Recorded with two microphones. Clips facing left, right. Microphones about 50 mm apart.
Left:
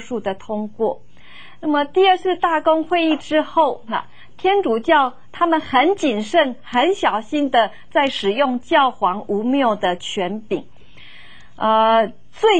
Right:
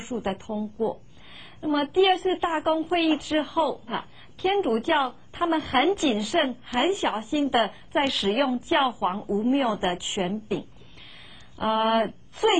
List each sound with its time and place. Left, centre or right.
0.0 s a woman's voice: left
11.6 s speech: left
12.1 s a sound: left